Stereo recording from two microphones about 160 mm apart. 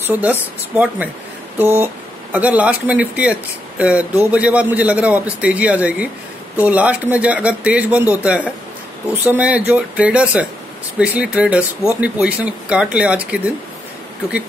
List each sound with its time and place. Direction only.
0.0 s speech: 10° right (ahead or behind)